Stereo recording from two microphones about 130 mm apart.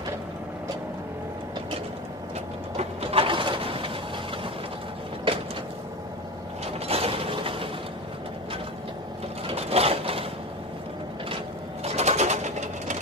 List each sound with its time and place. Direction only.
2.8 s a sound: 45° right (ahead or behind)
6.6 s mechanisms: 50° right (ahead or behind)
9.5 s vehicle: 50° right (ahead or behind)
11.8 s sewing machine: 55° right (ahead or behind)